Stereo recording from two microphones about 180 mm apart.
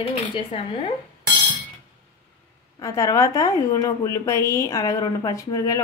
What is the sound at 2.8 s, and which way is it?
A woman's voice, 15° left (ahead or behind).